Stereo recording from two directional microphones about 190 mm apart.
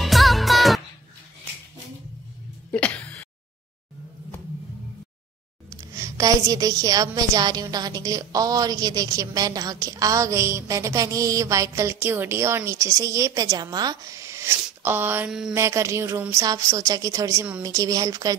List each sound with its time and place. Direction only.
0.0 s music: centre (ahead or behind)
2.7 s a sound: 5° left (ahead or behind)
5.8 s a woman's voice: 15° right (ahead or behind)
15.5 s a woman's voice: 15° right (ahead or behind)